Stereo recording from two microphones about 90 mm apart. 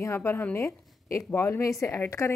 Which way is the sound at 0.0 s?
30° left (ahead or behind).